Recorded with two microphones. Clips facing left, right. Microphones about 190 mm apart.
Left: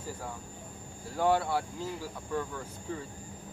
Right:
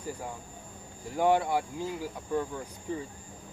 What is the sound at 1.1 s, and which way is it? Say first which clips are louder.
Speech: right 2 dB; 15° right (ahead or behind).